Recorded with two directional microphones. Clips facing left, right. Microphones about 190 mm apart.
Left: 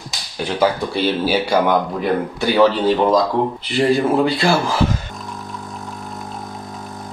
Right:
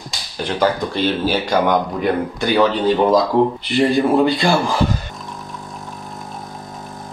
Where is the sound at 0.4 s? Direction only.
10° left (ahead or behind).